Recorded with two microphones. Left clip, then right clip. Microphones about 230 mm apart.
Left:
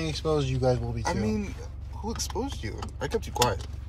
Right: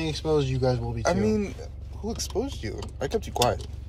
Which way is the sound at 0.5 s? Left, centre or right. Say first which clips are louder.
Even; centre.